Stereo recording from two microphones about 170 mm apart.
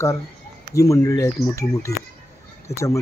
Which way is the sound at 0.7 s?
20° left (ahead or behind).